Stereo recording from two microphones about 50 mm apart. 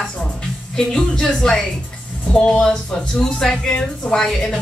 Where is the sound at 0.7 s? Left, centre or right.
Centre.